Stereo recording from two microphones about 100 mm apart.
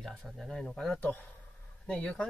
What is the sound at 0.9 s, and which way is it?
Speech, 15° left (ahead or behind).